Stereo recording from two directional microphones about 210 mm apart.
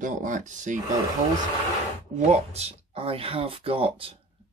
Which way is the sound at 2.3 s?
30° right (ahead or behind).